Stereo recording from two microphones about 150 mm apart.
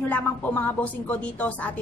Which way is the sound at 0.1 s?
10° left (ahead or behind).